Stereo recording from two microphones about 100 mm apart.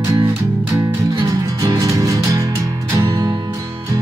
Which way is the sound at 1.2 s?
35° right (ahead or behind).